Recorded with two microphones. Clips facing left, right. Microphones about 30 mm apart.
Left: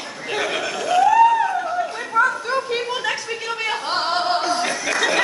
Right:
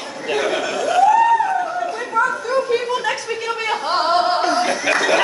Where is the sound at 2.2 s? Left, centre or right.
Left.